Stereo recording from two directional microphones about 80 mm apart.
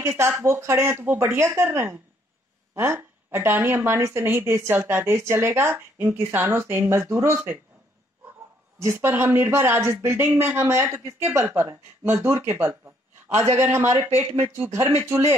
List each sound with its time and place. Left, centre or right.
0.0 s speech: right
8.7 s speech: right